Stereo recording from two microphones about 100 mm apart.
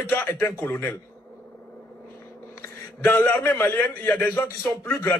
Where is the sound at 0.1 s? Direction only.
20° left (ahead or behind).